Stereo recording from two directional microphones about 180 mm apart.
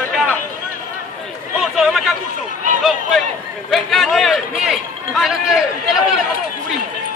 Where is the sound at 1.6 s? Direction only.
Centre (ahead or behind).